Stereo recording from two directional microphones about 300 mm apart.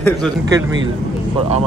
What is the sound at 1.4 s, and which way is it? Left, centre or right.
Speech, right.